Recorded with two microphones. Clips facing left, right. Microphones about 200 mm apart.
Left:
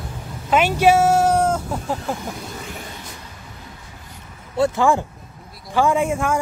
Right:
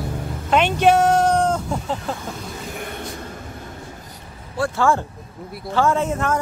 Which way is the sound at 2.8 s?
60° right (ahead or behind).